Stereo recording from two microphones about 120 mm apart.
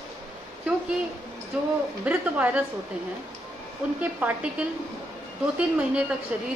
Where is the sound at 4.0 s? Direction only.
15° right (ahead or behind).